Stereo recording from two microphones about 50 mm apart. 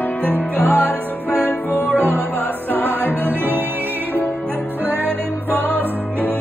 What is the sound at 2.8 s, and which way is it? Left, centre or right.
Music, right.